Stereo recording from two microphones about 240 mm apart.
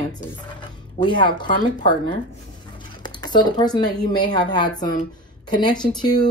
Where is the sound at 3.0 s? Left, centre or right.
Centre.